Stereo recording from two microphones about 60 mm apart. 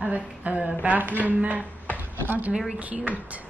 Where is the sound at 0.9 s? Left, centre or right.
Right.